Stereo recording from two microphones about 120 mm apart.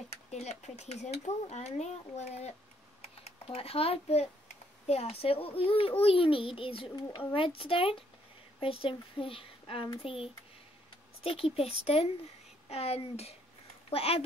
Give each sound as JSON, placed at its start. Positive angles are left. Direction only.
{"t": 0.3, "sound": "speech", "side_deg": 65}
{"t": 3.0, "sound": "typing", "side_deg": 55}
{"t": 4.8, "sound": "a child's voice", "side_deg": 60}